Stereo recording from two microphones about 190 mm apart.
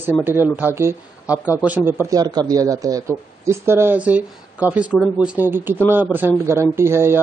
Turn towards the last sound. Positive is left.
turn(degrees=-15)  # may be behind; listen again after turning